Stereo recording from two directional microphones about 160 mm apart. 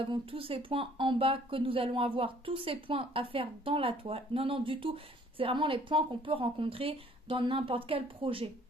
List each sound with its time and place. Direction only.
0.0 s speech: 35° right (ahead or behind)